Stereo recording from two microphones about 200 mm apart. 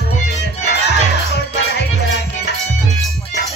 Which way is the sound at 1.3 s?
55° left (ahead or behind).